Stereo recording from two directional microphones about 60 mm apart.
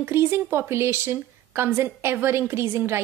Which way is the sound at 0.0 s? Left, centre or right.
Right.